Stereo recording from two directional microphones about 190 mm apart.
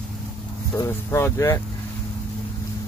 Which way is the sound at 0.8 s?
15° left (ahead or behind).